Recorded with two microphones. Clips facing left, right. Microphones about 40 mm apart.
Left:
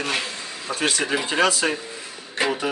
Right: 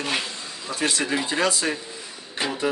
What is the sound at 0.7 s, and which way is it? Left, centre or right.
Speech, left.